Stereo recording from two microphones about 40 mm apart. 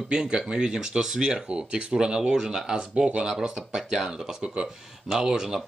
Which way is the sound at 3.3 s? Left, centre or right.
Centre.